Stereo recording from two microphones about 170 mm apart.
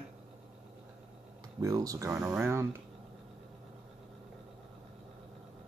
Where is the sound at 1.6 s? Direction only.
20° right (ahead or behind).